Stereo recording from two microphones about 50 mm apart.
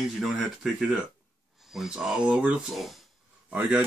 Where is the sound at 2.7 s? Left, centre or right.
Centre.